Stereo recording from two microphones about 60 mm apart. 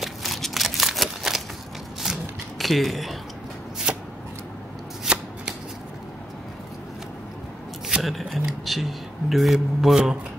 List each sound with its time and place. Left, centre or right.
0.0 s a sound: centre
2.6 s speech: centre
3.9 s shuffling cards: centre
5.1 s shuffling cards: centre
8.0 s speech: centre